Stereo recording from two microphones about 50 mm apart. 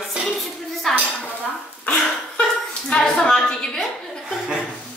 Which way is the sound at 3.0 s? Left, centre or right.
Centre.